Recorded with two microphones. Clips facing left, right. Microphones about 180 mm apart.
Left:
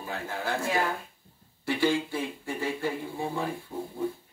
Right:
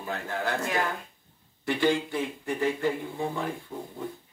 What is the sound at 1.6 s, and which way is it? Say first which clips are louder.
Speech: right 1 dB; 20° right (ahead or behind).